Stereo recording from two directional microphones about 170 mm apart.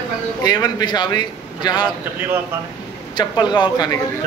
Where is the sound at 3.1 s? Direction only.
25° left (ahead or behind).